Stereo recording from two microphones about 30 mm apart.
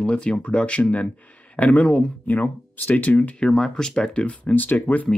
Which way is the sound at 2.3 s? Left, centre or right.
Left.